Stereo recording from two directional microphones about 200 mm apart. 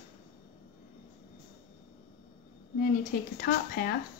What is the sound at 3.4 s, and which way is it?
Speech, 50° left (ahead or behind).